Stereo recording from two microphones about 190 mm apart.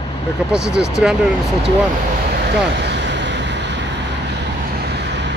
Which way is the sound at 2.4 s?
65° right (ahead or behind).